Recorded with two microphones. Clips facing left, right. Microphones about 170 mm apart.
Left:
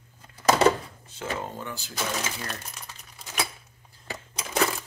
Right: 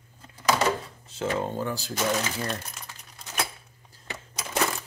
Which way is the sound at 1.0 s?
30° right (ahead or behind).